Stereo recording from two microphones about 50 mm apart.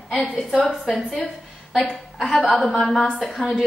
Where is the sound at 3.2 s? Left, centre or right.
Centre.